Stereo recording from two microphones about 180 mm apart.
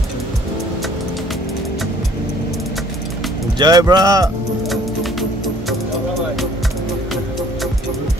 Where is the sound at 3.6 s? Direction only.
20° right (ahead or behind).